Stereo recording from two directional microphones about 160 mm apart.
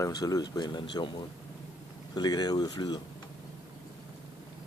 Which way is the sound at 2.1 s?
25° left (ahead or behind).